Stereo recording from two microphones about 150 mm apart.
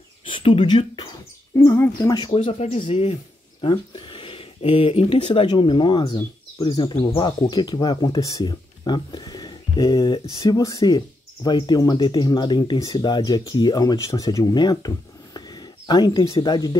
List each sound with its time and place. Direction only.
0.3 s speech: 35° left (ahead or behind)
1.5 s speech: 20° left (ahead or behind)
2.3 s speech: 45° left (ahead or behind); by 16.7 s 25° left (ahead or behind)